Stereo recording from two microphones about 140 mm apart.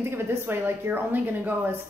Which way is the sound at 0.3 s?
15° right (ahead or behind).